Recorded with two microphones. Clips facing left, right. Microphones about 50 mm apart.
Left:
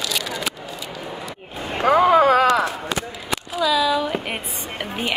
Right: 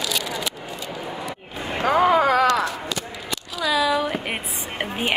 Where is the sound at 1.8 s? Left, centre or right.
Left.